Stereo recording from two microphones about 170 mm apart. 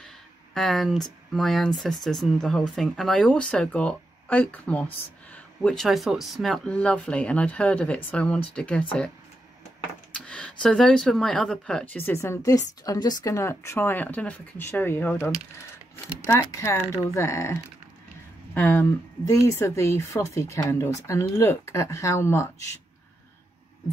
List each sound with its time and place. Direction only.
0.6 s speech: centre (ahead or behind)
10.1 s speech: 5° left (ahead or behind)